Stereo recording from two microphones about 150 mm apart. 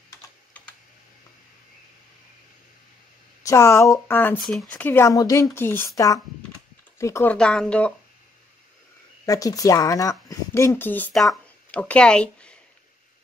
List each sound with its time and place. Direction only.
3.4 s speech: 20° left (ahead or behind)
4.4 s speech: centre (ahead or behind)
4.7 s speech: 15° left (ahead or behind)
7.3 s speech: 5° left (ahead or behind)
9.2 s speech: 25° left (ahead or behind); by 12.5 s 5° left (ahead or behind)